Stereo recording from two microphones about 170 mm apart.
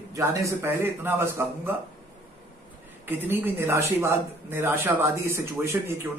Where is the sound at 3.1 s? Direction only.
10° right (ahead or behind).